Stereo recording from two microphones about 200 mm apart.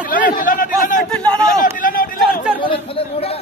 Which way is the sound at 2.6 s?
25° left (ahead or behind).